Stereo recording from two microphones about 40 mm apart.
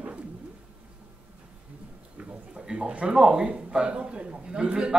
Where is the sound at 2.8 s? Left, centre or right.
Right.